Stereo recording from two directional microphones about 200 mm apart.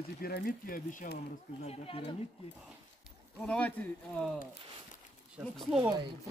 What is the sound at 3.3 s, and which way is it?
Speech, 5° left (ahead or behind).